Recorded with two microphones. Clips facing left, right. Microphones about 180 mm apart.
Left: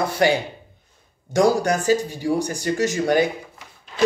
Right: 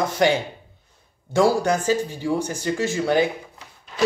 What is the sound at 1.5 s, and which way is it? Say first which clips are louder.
Speech: left 1 dB; 40° left (ahead or behind).